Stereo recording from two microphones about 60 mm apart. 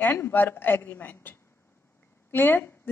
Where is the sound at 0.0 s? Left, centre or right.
Left.